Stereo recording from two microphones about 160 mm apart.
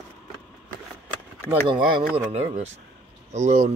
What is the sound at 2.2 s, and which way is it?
Speech, 45° right (ahead or behind).